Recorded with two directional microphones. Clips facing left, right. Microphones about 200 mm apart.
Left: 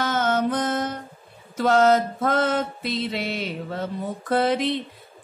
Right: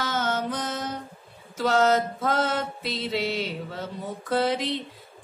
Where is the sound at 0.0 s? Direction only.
55° left (ahead or behind).